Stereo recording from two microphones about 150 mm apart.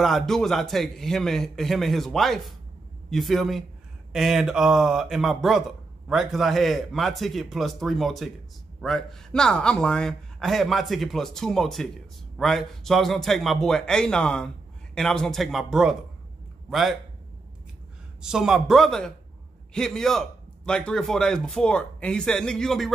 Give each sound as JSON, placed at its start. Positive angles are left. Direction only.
{"t": 0.0, "sound": "a man's voice", "side_deg": 0}
{"t": 18.2, "sound": "a man's voice", "side_deg": -5}